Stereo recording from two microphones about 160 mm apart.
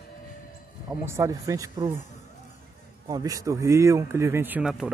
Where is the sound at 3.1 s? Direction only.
20° right (ahead or behind); by 4.9 s 5° right (ahead or behind).